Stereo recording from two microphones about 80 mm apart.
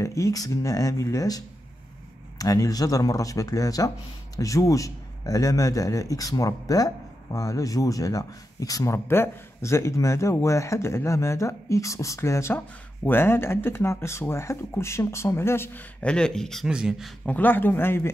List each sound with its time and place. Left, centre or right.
0.0 s a sound: left
0.5 s a man's voice: left
12.5 s speech: left
16.0 s speech: centre
16.6 s speech: centre
17.2 s speech: left